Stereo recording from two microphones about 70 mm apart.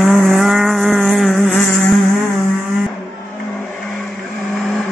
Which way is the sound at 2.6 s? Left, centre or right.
Centre.